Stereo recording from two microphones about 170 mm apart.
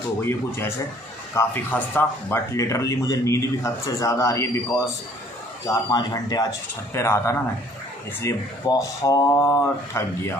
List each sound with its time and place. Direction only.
0.2 s speech: 15° left (ahead or behind)